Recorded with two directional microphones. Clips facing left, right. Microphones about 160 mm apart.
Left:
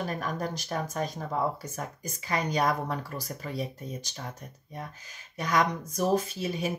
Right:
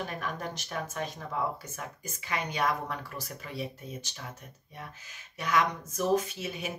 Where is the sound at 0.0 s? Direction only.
40° left (ahead or behind).